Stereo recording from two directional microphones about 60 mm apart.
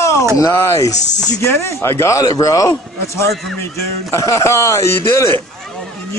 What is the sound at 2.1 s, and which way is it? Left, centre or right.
A man's voice, left.